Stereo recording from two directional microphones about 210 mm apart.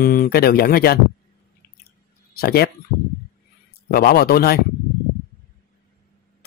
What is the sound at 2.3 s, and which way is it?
Speech, 50° left (ahead or behind).